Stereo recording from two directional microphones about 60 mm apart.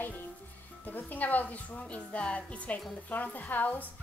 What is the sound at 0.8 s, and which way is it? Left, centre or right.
A woman's voice, left.